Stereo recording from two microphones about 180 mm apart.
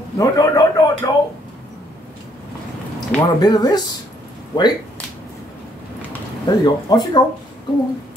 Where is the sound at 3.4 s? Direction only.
20° left (ahead or behind).